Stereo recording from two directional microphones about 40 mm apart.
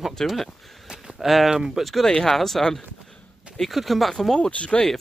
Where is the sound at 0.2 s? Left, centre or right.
Centre.